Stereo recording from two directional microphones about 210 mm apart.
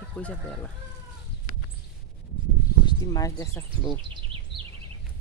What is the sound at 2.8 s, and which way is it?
Speech, 20° left (ahead or behind).